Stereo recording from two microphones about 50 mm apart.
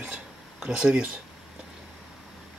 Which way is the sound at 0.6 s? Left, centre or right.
Centre.